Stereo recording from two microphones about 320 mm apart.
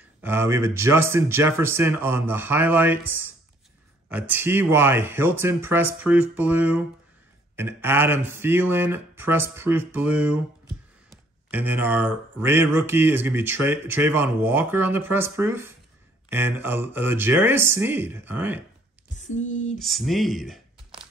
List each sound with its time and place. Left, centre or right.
0.2 s speech: centre
19.1 s a sound: left
19.8 s speech: centre